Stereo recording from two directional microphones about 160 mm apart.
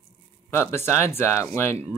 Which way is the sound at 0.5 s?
15° left (ahead or behind).